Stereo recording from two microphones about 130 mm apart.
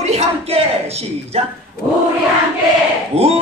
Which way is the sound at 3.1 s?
55° right (ahead or behind).